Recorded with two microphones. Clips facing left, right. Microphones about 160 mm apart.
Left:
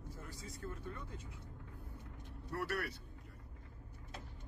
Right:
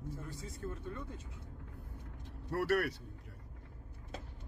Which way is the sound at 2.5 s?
70° right (ahead or behind).